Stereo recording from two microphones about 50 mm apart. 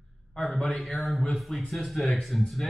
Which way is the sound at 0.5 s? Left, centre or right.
Centre.